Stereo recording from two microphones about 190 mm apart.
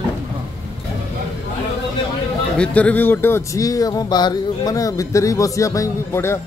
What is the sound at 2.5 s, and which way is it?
Speech, 5° left (ahead or behind).